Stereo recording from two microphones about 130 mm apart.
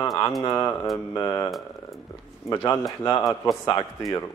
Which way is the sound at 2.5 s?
25° left (ahead or behind).